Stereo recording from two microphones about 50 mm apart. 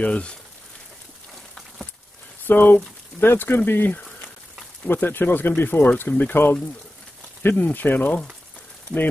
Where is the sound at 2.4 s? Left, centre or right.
Left.